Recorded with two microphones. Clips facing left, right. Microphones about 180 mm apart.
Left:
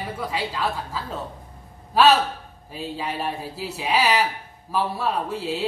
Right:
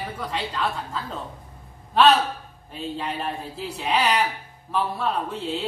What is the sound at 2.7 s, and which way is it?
Speech, 5° left (ahead or behind).